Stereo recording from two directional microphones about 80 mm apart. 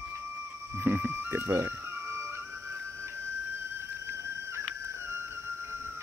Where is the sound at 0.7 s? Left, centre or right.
Right.